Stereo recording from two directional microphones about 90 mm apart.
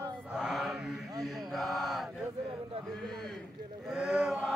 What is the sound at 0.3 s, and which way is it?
Chant, 5° right (ahead or behind).